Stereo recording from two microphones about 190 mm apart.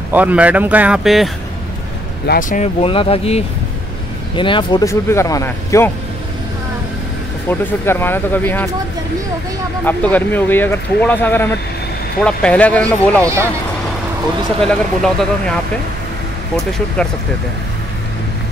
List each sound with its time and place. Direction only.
0.1 s speech: 10° right (ahead or behind)
2.2 s speech: 45° left (ahead or behind)
2.8 s speech: 30° left (ahead or behind)
7.4 s speech: 10° left (ahead or behind)
9.8 s speech: 10° left (ahead or behind)
14.6 s speech: 5° left (ahead or behind)